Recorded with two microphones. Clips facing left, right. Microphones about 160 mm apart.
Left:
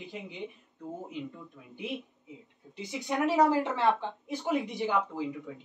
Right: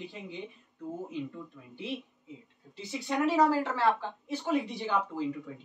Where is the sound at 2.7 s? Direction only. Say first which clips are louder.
Even; 20° left (ahead or behind).